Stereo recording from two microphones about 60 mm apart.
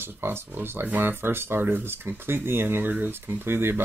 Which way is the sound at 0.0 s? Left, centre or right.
Right.